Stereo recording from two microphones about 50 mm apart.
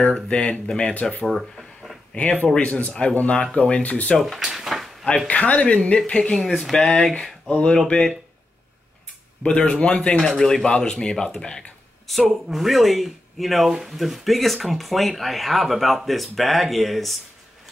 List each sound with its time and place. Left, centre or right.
0.0 s speech: centre
1.2 s a sound: centre
2.1 s speech: left
4.4 s a sound: centre
5.0 s speech: centre
6.3 s speech: centre
7.4 s speech: centre
9.5 s speech: centre
10.2 s speech: centre
12.1 s speech: centre